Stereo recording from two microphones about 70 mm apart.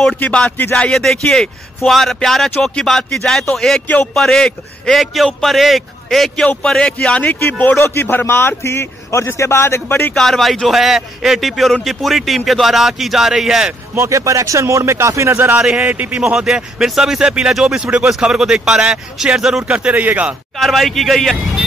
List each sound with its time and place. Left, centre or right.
0.9 s a man's voice: centre
6.8 s speech: centre
7.7 s a man's voice: left
10.1 s a man's voice: centre
13.9 s speech: right
15.8 s a man's voice: right
16.2 s speech: centre
20.5 s a man's voice: centre